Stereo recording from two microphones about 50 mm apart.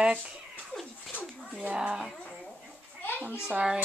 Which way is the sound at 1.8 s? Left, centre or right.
Centre.